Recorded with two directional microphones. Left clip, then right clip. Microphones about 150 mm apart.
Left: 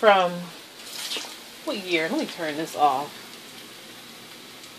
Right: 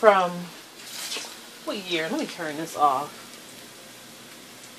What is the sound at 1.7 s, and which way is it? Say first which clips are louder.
Speech: left 2 dB; 10° left (ahead or behind).